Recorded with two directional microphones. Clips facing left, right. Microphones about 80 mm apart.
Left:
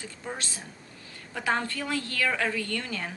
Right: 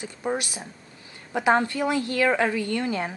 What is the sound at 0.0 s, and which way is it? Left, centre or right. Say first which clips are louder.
Speech: right 9 dB; centre.